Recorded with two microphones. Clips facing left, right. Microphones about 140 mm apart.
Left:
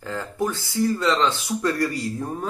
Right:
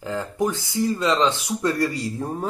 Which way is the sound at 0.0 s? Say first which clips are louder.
Right 2 dB; 15° right (ahead or behind).